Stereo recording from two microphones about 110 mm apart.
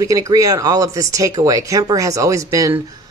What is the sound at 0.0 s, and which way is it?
Speech, 30° right (ahead or behind).